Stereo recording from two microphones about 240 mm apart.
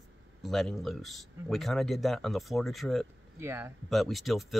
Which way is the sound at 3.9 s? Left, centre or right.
Centre.